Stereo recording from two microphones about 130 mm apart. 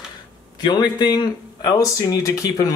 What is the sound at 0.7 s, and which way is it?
Speech, 35° left (ahead or behind).